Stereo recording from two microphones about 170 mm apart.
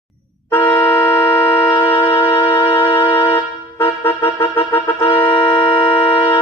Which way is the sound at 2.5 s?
30° left (ahead or behind).